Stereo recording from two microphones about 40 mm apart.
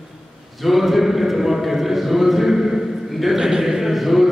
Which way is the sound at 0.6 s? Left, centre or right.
Centre.